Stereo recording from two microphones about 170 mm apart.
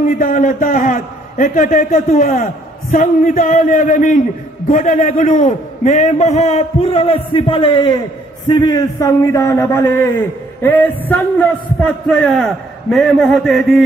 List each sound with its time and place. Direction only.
0.2 s a man's voice: 55° left (ahead or behind); by 13.8 s centre (ahead or behind)